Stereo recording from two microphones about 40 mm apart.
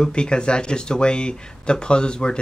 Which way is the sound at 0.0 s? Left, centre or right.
Left.